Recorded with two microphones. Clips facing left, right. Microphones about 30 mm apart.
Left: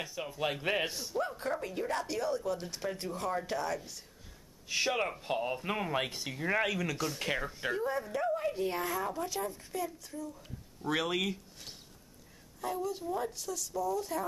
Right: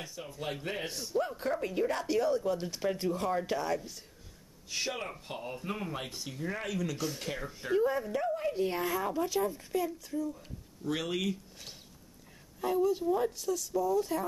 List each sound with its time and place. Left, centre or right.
0.4 s speech: left
0.9 s a woman's voice: centre
4.6 s speech: centre
5.4 s speech: left
6.4 s speech: left
6.9 s speech: centre
7.2 s speech: left
7.7 s a woman's voice: centre
11.0 s speech: left
12.5 s a woman's voice: centre